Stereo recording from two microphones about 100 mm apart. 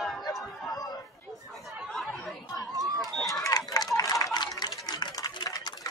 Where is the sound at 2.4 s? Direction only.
40° left (ahead or behind).